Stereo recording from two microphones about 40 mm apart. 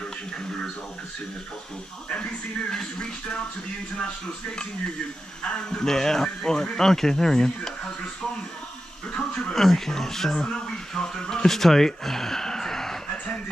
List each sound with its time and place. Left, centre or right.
2.7 s speech: centre
5.4 s speech: centre
9.5 s speech: centre